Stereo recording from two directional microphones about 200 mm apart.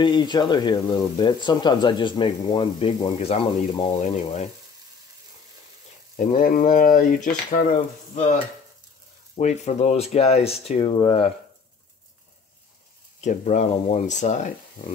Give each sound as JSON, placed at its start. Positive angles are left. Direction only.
{"t": 0.0, "sound": "speech", "side_deg": 25}
{"t": 4.0, "sound": "speech", "side_deg": 35}
{"t": 6.1, "sound": "speech", "side_deg": 40}
{"t": 9.4, "sound": "speech", "side_deg": 35}
{"t": 13.2, "sound": "speech", "side_deg": 35}